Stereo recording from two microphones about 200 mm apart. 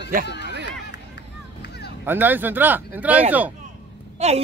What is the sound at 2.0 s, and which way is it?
Speech, 10° right (ahead or behind).